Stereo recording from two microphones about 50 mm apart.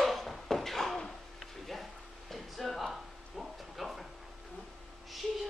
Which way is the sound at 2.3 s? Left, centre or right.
Centre.